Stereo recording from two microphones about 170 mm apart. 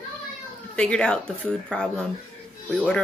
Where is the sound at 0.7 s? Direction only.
5° left (ahead or behind).